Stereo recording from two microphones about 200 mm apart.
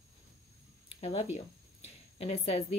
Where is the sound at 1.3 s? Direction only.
30° left (ahead or behind).